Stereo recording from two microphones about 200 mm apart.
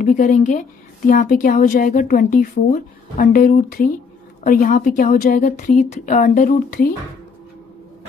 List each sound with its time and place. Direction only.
0.0 s a woman's voice: 40° left (ahead or behind)